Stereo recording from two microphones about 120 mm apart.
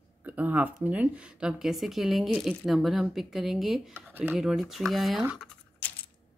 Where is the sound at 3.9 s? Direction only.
15° right (ahead or behind).